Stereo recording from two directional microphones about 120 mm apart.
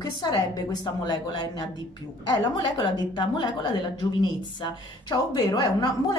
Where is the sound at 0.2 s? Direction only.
35° left (ahead or behind).